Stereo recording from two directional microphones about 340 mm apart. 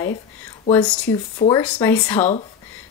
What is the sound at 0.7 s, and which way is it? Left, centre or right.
Speech, centre.